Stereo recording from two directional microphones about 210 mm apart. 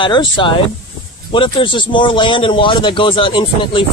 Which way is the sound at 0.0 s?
20° left (ahead or behind).